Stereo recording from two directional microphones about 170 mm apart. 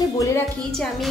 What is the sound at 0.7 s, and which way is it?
Speech, centre (ahead or behind).